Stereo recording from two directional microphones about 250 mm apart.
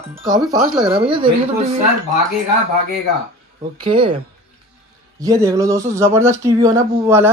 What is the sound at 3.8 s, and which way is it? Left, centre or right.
Speech, centre.